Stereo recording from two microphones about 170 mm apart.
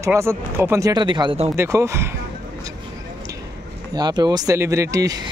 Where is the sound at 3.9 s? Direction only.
25° right (ahead or behind).